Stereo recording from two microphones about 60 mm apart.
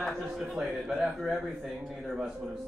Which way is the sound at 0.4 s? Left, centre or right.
Centre.